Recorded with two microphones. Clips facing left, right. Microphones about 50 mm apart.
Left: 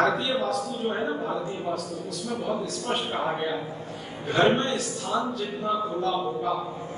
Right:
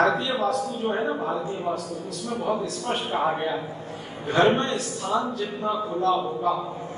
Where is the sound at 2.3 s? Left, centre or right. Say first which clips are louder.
Right 3 dB; right.